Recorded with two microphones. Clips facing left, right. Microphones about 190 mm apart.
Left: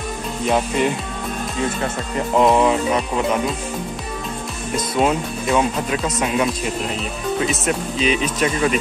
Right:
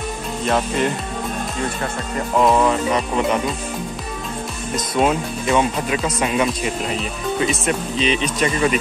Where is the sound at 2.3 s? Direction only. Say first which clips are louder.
Left 1 dB; 20° left (ahead or behind).